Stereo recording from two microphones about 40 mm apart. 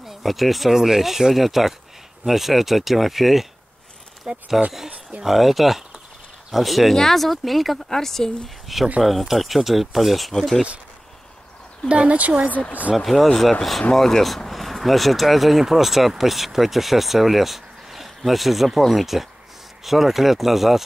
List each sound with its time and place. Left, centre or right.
0.0 s speech: centre
4.3 s speech: right
5.2 s speech: centre
8.7 s speech: centre
10.3 s speech: centre
11.9 s speech: right
12.4 s speech: left
12.9 s speech: centre